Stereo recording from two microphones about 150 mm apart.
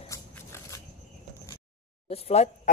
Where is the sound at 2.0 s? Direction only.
40° left (ahead or behind).